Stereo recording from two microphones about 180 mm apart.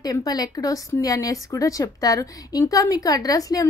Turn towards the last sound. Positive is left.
turn(degrees=20)  # may be behind; listen again after turning